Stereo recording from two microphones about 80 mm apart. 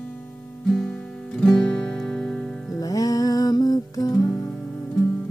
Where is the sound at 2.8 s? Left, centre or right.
Left.